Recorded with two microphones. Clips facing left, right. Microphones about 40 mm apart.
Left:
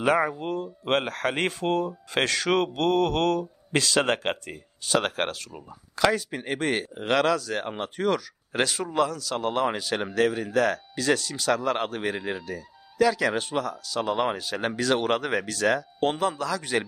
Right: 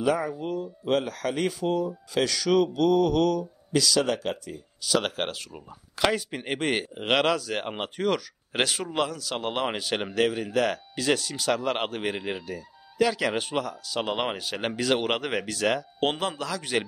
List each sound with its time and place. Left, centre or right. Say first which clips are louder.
0.0 s speech: left 3 dB; left
5.5 s speech: left 1 dB; right